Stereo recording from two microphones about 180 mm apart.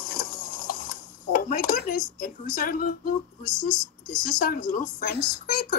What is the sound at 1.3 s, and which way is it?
Dishes, 50° left (ahead or behind).